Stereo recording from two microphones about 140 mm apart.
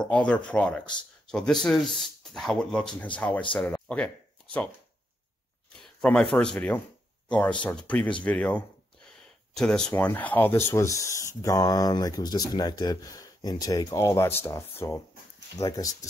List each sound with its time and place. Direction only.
0.0 s speech: 5° left (ahead or behind)
5.8 s a sound: 5° left (ahead or behind)
6.3 s speech: 5° left (ahead or behind); by 16.1 s 25° left (ahead or behind)